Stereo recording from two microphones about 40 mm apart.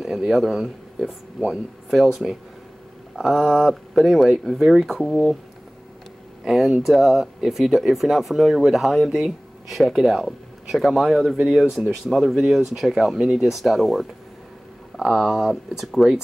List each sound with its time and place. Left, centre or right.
0.4 s speech: centre
3.9 s speech: centre
5.0 s speech: centre
6.4 s speech: centre
11.4 s speech: right
11.7 s speech: centre